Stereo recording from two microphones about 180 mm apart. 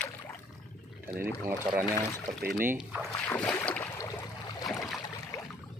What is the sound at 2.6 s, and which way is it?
Speech, 10° right (ahead or behind).